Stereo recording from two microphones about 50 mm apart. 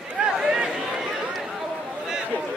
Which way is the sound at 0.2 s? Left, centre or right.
Centre.